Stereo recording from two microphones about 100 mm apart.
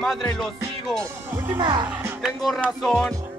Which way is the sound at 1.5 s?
50° right (ahead or behind).